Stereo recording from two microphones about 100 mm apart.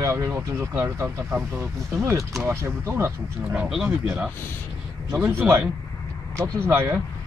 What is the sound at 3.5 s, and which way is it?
Speech, 5° right (ahead or behind).